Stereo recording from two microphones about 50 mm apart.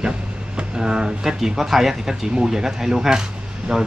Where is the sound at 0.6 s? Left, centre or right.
Centre.